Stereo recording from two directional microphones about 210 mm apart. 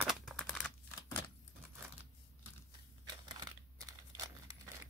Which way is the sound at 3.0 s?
20° right (ahead or behind).